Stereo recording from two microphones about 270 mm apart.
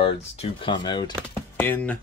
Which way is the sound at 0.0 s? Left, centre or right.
Centre.